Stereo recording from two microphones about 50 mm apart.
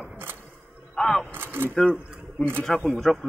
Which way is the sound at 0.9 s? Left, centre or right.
Centre.